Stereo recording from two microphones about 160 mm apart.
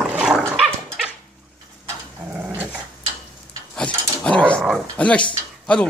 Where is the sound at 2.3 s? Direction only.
10° right (ahead or behind).